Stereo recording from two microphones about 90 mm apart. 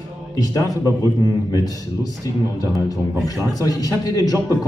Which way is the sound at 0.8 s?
35° right (ahead or behind).